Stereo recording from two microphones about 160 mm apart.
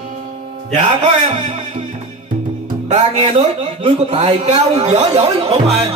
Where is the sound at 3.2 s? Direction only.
35° right (ahead or behind).